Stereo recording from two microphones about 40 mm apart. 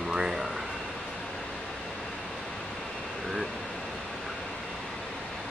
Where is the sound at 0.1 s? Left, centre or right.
Centre.